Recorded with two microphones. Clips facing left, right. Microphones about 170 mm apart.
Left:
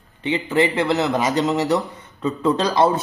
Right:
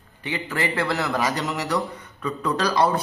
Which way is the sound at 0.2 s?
20° left (ahead or behind).